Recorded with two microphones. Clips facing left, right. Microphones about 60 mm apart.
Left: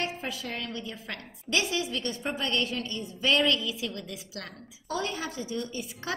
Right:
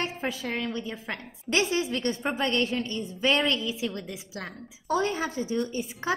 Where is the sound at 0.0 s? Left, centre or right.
Right.